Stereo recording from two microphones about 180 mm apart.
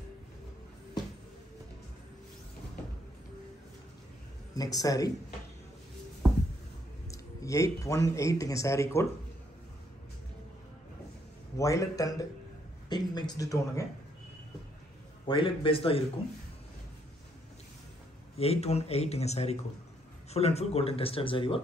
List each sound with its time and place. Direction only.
4.6 s speech: 20° left (ahead or behind)
7.1 s speech: 15° left (ahead or behind)
11.5 s a man's voice: 15° left (ahead or behind)
15.2 s speech: 30° left (ahead or behind)
18.4 s speech: 35° left (ahead or behind)